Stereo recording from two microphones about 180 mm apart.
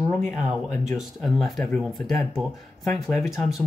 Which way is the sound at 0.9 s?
Centre (ahead or behind).